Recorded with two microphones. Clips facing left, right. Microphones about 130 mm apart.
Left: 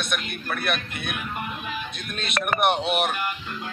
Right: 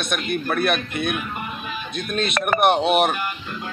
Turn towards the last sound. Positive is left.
turn(degrees=-40)  # may be behind; listen again after turning